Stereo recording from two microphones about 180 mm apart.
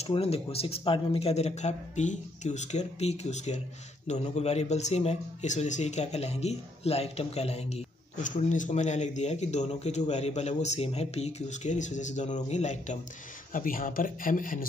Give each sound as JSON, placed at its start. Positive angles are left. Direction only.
{"t": 0.0, "sound": "speech", "side_deg": 35}